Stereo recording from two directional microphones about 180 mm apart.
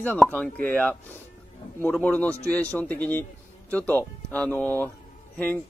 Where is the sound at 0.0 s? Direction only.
10° left (ahead or behind).